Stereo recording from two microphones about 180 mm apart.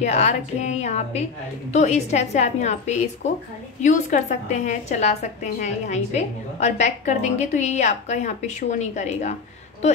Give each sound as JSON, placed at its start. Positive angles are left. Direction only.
{"t": 0.0, "sound": "a woman's voice", "side_deg": 40}